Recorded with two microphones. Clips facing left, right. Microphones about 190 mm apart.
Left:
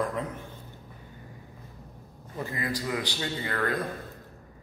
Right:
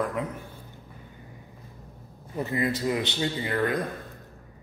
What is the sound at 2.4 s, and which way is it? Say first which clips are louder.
A man's voice: right 5 dB; 25° right (ahead or behind).